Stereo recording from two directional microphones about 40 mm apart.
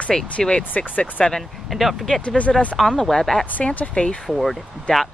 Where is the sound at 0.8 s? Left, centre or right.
Left.